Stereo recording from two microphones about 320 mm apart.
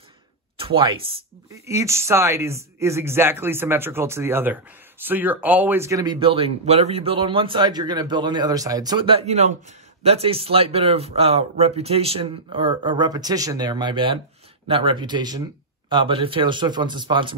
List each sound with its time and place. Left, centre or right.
0.6 s speech: centre